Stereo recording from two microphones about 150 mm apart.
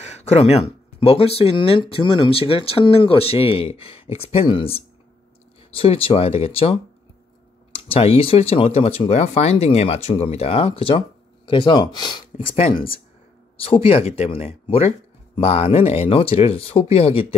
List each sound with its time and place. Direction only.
0.0 s speech: 50° left (ahead or behind)